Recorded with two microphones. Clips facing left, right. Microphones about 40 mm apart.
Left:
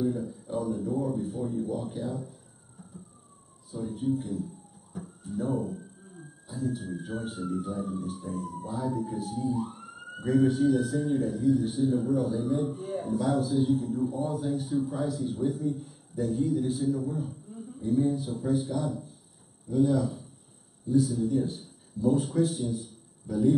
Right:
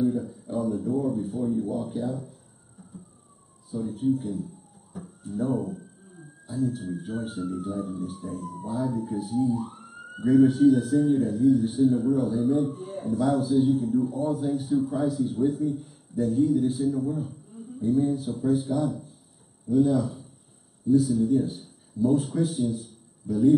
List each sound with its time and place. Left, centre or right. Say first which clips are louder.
0.0 s a sound: right 4 dB; centre
1.0 s speech: right 4 dB; centre
3.7 s a man's voice: right 4 dB; centre